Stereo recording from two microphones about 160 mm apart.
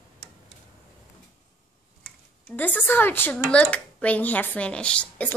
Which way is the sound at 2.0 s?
10° left (ahead or behind).